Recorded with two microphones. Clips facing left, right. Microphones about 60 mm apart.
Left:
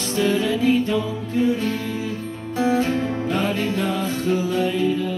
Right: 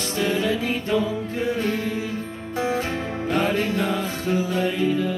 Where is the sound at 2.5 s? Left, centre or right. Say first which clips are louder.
Left 4 dB; right.